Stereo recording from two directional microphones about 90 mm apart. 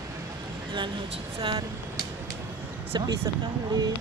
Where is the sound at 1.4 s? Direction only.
85° right.